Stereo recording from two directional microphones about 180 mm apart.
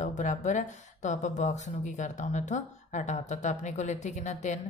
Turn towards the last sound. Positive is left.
turn(degrees=40)  # may be behind; listen again after turning